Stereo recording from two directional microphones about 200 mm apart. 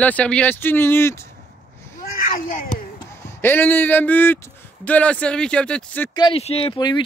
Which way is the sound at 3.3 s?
10° left (ahead or behind).